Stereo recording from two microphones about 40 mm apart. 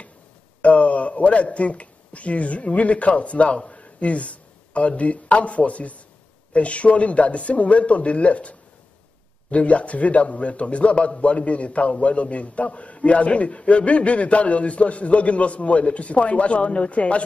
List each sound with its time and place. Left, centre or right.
0.6 s a man's voice: left